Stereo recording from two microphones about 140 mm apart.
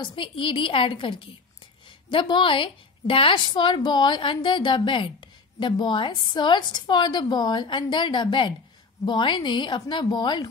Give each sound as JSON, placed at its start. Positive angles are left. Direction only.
{"t": 0.0, "sound": "a woman's voice", "side_deg": 35}